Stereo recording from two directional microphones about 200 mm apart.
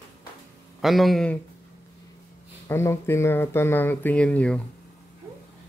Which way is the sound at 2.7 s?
10° left (ahead or behind).